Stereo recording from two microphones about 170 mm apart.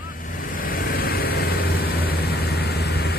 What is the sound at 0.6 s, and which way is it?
Vehicle, 60° left (ahead or behind).